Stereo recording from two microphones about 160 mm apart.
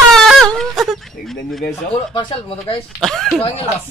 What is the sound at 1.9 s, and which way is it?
Speech, 35° left (ahead or behind).